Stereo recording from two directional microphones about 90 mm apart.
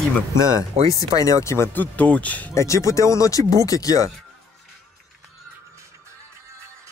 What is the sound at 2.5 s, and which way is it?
Speech, 35° left (ahead or behind).